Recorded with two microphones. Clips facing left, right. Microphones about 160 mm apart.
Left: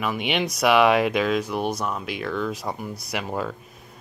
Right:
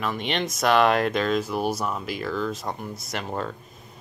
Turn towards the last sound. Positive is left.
turn(degrees=5)  # may be behind; listen again after turning